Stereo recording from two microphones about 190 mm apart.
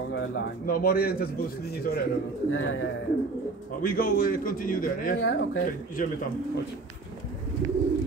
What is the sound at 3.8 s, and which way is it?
A man's voice, 50° left (ahead or behind).